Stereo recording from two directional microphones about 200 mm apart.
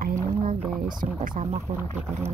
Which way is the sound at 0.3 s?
30° right (ahead or behind).